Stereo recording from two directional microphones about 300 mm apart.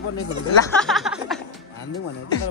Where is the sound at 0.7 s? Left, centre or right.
Centre.